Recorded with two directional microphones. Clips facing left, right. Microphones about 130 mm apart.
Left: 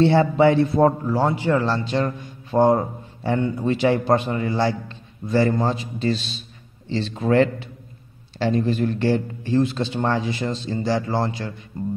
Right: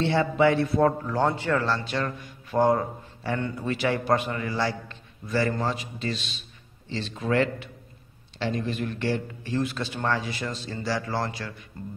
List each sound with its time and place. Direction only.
0.0 s a man's voice: 35° left (ahead or behind)
1.0 s a man's voice: 10° left (ahead or behind)